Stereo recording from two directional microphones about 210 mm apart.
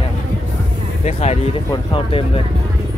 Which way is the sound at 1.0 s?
30° left (ahead or behind).